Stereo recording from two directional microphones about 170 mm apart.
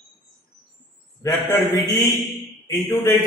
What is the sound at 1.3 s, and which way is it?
A man's voice, 15° left (ahead or behind).